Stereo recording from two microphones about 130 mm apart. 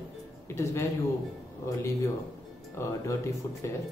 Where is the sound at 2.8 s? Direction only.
20° left (ahead or behind).